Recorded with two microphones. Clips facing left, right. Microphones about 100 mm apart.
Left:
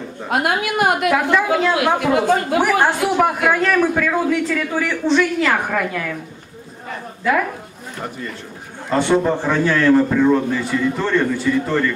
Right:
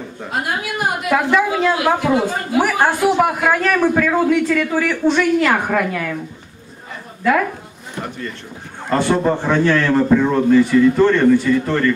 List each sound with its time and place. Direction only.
0.3 s a woman's voice: 65° left (ahead or behind)
1.1 s a woman's voice: 5° right (ahead or behind)
8.9 s a man's voice: 5° right (ahead or behind)